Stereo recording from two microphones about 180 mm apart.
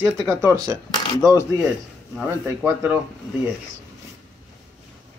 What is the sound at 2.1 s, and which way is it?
Speech, 10° right (ahead or behind).